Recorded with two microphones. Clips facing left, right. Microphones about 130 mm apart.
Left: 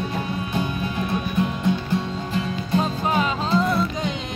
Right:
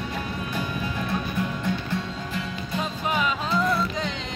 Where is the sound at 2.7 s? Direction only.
35° left (ahead or behind).